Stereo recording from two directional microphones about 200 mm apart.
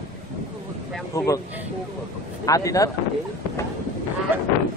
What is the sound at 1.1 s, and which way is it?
Speech, 15° left (ahead or behind).